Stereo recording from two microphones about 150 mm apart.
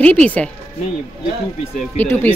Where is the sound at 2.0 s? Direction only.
10° left (ahead or behind).